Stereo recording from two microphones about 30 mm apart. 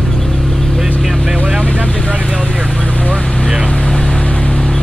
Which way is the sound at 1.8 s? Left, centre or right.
Left.